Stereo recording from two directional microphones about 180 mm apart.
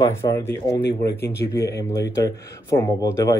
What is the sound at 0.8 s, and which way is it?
Speech, 65° left (ahead or behind).